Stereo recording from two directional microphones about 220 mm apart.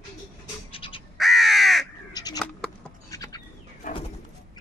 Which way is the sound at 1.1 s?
Centre (ahead or behind).